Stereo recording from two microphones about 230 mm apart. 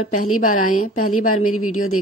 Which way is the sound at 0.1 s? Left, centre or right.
Left.